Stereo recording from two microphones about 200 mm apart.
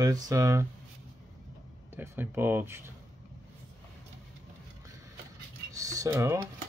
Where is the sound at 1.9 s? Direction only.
10° right (ahead or behind).